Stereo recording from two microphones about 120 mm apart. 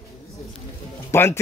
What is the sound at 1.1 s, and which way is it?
Speech, 20° left (ahead or behind).